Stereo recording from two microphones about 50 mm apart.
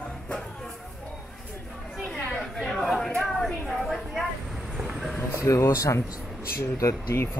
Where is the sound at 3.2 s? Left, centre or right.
Centre.